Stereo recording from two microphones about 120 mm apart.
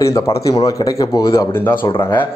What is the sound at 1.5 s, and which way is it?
Speech, 15° left (ahead or behind).